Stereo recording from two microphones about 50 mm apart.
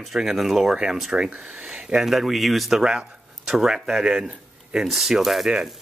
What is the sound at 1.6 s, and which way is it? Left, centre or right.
Speech, centre.